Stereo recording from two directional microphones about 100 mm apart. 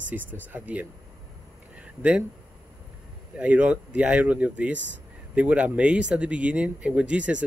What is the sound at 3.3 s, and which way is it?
Speech, 15° right (ahead or behind).